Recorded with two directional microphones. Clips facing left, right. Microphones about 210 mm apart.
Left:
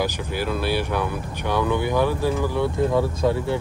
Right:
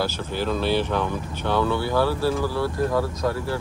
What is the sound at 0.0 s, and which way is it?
Speech, 10° left (ahead or behind).